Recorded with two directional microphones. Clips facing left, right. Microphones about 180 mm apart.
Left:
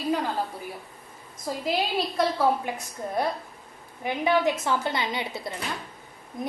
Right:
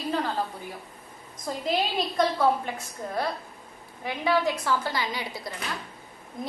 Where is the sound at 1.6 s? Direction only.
5° left (ahead or behind).